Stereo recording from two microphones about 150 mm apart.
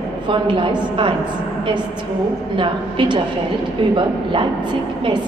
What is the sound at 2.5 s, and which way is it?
A woman's voice, 30° right (ahead or behind).